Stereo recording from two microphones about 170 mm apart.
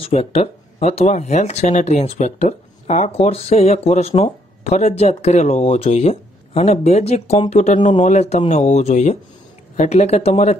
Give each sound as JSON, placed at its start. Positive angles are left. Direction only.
{"t": 0.0, "sound": "speech", "side_deg": 35}